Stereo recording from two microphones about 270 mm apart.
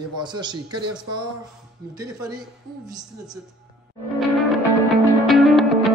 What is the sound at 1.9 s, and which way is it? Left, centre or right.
Speech, centre.